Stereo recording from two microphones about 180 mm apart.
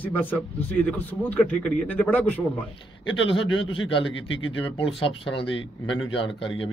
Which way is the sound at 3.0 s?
90° left.